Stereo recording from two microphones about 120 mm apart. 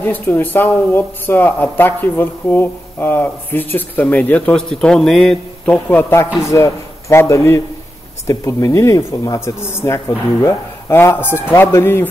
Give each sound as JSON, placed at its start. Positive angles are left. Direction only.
{"t": 0.0, "sound": "speech", "side_deg": 15}
{"t": 5.9, "sound": "speech", "side_deg": 15}